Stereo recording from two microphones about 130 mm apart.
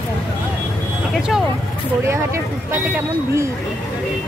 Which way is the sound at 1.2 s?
5° right (ahead or behind).